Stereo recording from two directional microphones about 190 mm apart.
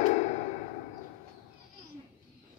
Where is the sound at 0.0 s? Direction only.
35° left (ahead or behind).